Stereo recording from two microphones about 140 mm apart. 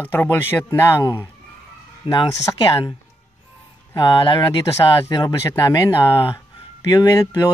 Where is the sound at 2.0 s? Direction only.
35° left (ahead or behind).